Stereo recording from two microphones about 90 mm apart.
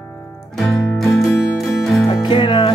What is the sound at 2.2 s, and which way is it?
Music, 60° left (ahead or behind).